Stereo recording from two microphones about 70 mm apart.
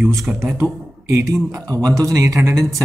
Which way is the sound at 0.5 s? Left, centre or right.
Right.